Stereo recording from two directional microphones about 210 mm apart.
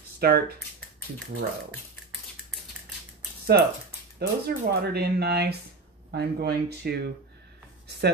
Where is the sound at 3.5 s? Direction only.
50° right (ahead or behind).